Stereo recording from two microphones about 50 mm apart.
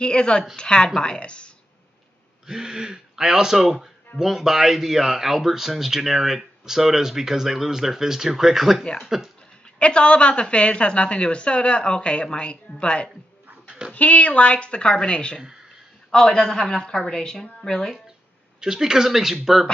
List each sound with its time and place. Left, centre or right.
0.0 s a woman's voice: centre
2.4 s speech: centre
9.8 s speech: left
13.7 s dog: centre
13.9 s a woman's voice: left; by 17.9 s centre
18.6 s speech: centre